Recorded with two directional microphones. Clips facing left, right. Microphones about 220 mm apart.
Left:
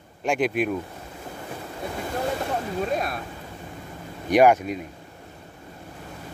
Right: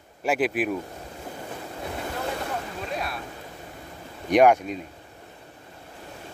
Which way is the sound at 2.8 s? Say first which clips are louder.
Left 6 dB; 45° left (ahead or behind).